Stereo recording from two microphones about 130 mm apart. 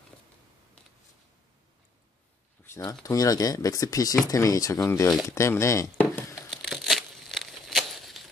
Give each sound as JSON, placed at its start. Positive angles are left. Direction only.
{"t": 2.8, "sound": "speech", "side_deg": 25}
{"t": 6.5, "sound": "crumpling", "side_deg": 0}